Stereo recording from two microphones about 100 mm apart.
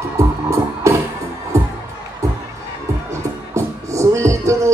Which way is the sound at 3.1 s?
30° right (ahead or behind).